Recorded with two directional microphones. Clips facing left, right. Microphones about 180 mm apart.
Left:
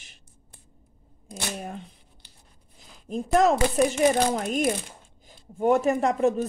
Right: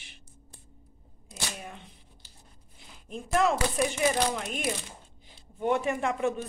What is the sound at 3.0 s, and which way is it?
Speech, 40° left (ahead or behind).